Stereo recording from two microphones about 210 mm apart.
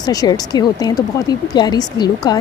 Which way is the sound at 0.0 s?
20° left (ahead or behind).